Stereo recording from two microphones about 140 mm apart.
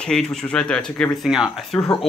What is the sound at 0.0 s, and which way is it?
Speech, 5° left (ahead or behind).